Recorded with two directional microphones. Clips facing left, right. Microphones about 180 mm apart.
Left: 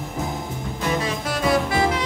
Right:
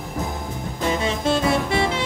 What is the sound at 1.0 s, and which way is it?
Saxophone, 25° right (ahead or behind).